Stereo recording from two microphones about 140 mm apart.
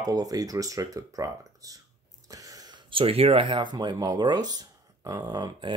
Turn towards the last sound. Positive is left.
turn(degrees=-30)  # may be behind; listen again after turning